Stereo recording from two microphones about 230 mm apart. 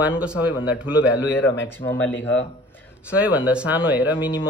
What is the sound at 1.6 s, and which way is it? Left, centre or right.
Speech, centre.